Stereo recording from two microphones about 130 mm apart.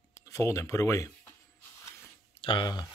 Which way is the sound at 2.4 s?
40° left (ahead or behind).